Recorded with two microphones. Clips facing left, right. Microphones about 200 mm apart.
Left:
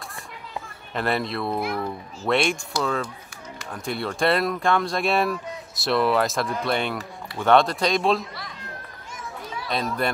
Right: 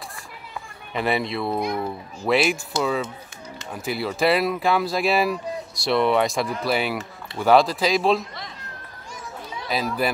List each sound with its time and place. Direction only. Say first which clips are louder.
0.9 s speech: right 1 dB; centre (ahead or behind)
1.6 s a child's voice: right 2 dB; 20° right (ahead or behind)
2.2 s speech: right 2 dB; 5° right (ahead or behind)
9.7 s speech: right 2 dB; 5° right (ahead or behind)